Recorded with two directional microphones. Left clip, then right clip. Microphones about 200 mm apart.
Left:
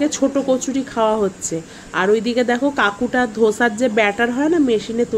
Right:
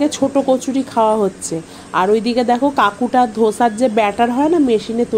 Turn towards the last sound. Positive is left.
turn(degrees=-15)  # may be behind; listen again after turning